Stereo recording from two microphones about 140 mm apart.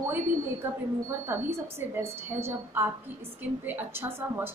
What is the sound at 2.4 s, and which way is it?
A woman's voice, 15° right (ahead or behind).